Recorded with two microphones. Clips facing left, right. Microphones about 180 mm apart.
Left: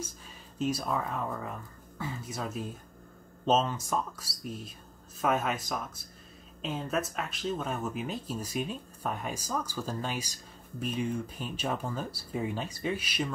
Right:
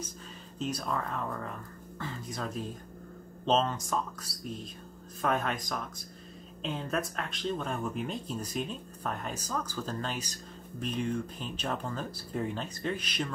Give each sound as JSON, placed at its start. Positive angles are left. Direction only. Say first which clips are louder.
{"t": 0.6, "sound": "speech", "louder": "left 3 dB", "side_deg": 10}